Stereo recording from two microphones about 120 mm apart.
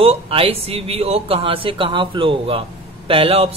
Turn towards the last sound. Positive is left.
turn(degrees=-50)  # may be behind; listen again after turning